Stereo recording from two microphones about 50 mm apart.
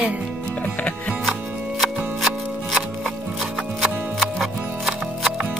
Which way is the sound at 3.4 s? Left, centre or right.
Centre.